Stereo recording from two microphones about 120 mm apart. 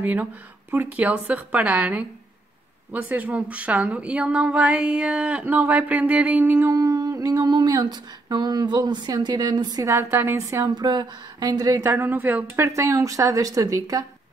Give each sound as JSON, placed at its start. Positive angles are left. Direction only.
{"t": 0.0, "sound": "a woman's voice", "side_deg": -15}
{"t": 9.8, "sound": "speech", "side_deg": -20}
{"t": 11.9, "sound": "speech", "side_deg": -15}